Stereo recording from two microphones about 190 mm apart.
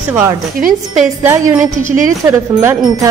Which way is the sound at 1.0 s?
10° right (ahead or behind).